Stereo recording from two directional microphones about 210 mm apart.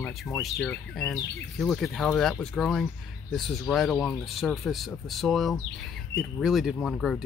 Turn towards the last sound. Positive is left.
turn(degrees=0)  # may be behind; listen again after turning